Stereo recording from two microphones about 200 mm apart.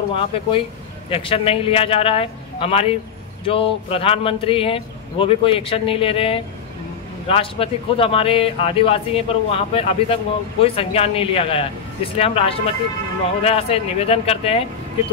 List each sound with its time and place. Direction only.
0.1 s speech: 25° left (ahead or behind)